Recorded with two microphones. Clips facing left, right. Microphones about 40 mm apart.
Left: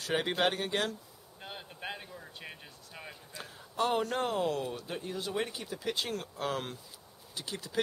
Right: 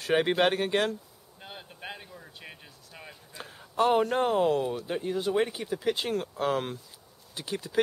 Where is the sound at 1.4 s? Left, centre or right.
Centre.